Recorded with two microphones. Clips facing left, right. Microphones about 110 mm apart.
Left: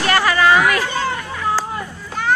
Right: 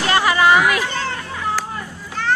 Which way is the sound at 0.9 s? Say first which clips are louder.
Left 3 dB; 10° left (ahead or behind).